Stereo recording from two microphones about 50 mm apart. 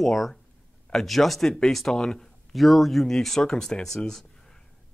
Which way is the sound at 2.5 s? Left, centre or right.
Centre.